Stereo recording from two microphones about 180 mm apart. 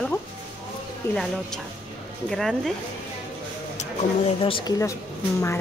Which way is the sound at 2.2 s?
Centre (ahead or behind).